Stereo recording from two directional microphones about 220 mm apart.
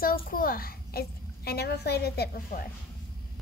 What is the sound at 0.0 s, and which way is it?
A child's voice, 40° left (ahead or behind).